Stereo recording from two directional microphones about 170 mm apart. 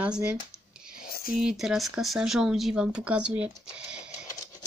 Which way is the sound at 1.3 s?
5° right (ahead or behind).